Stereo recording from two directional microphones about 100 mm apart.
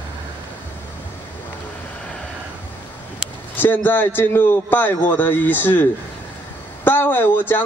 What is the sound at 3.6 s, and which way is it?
A man's voice, 20° left (ahead or behind).